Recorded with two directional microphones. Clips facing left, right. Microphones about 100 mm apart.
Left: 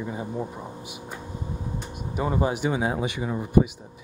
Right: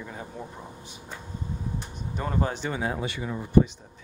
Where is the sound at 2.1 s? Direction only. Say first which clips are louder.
Left 4 dB; 10° left (ahead or behind).